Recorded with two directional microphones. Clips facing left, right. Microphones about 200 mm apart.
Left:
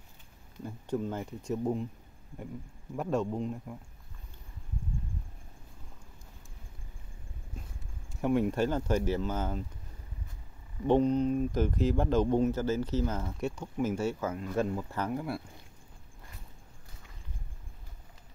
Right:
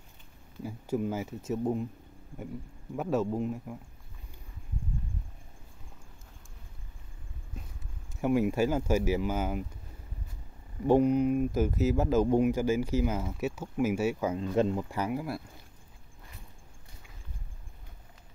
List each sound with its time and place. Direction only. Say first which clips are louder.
0.6 s speech: right 2 dB; 5° right (ahead or behind)
3.0 s speech: right 2 dB; 5° right (ahead or behind)
8.1 s speech: right 1 dB; 5° right (ahead or behind)
10.9 s speech: right 2 dB; 10° right (ahead or behind)
14.3 s speech: right 4 dB; 25° right (ahead or behind); by 15.4 s 5° right (ahead or behind)